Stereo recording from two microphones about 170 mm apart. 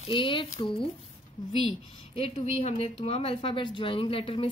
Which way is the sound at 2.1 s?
35° left (ahead or behind).